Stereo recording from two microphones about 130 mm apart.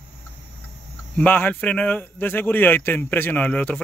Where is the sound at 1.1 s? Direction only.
10° left (ahead or behind).